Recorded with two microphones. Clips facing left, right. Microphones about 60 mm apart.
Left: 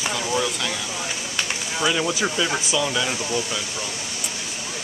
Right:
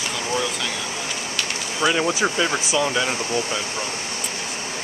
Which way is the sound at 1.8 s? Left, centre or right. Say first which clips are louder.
Right 3 dB; centre.